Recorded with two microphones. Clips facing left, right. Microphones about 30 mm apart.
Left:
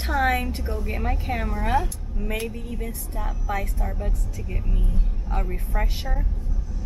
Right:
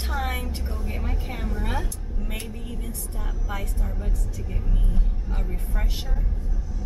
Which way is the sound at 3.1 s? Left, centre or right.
Centre.